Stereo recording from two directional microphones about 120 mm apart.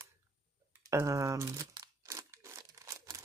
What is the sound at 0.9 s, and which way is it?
Crunch, 25° right (ahead or behind).